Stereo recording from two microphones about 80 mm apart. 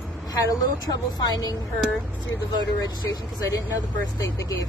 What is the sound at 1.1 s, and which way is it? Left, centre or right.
Speech, left.